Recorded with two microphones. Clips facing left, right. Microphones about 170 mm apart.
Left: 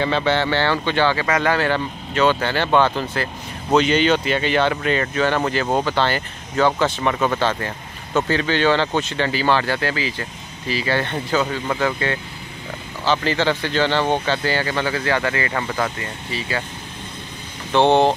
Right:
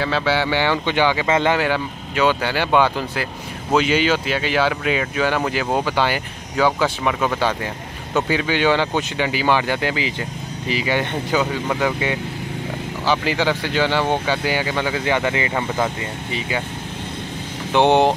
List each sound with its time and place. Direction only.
0.0 s speech: 5° right (ahead or behind)
17.7 s speech: 15° right (ahead or behind)